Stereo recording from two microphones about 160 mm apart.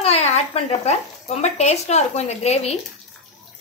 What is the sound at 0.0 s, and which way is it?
Speech, 40° left (ahead or behind).